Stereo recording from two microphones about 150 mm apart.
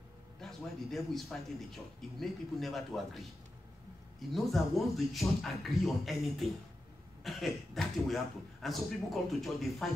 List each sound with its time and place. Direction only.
0.4 s a man's voice: centre (ahead or behind)
4.3 s a man's voice: centre (ahead or behind)